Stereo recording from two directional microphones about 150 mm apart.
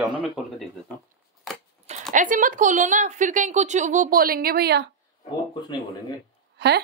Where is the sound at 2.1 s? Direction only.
60° right (ahead or behind); by 4.9 s 90° right.